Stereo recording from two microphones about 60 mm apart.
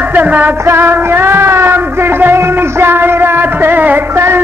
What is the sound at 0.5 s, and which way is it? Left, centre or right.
Music, right.